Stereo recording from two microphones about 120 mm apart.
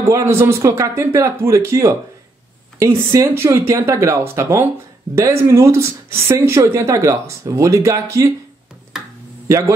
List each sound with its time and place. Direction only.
0.1 s speech: 20° right (ahead or behind)